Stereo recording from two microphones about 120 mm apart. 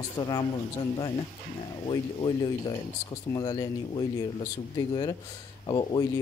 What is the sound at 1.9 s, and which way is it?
Speech, 40° left (ahead or behind).